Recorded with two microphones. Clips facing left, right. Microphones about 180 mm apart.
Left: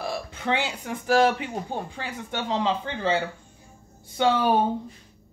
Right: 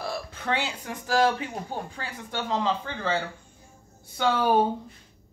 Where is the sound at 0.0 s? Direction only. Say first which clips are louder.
Left 2 dB; 20° left (ahead or behind).